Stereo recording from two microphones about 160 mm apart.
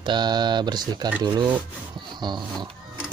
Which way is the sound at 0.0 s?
25° right (ahead or behind).